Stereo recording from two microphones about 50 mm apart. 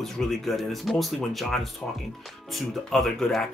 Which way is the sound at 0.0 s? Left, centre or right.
Centre.